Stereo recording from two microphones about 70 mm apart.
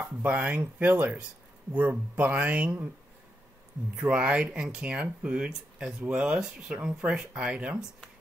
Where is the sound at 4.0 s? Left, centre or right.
Centre.